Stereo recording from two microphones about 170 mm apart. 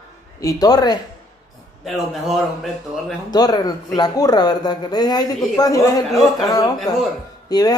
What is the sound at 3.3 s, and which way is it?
Speech, 25° left (ahead or behind).